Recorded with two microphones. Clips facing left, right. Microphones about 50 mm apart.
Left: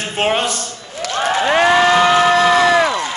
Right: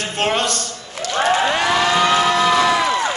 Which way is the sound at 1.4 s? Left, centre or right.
Left.